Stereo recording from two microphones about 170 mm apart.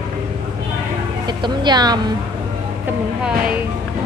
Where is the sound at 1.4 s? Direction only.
25° right (ahead or behind).